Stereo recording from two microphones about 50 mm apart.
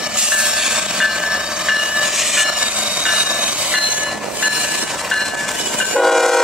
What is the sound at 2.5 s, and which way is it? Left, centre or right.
Train, right.